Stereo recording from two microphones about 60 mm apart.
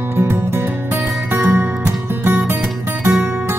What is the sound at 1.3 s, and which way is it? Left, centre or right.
Music, right.